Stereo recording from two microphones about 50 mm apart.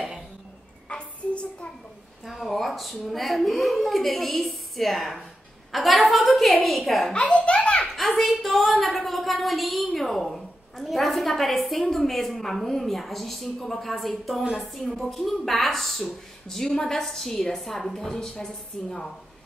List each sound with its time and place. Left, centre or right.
0.8 s child singing: left
2.2 s a woman's voice: centre
7.2 s a sound: left
7.9 s a woman's voice: centre